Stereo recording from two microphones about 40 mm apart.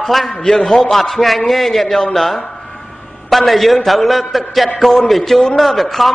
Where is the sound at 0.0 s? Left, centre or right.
Centre.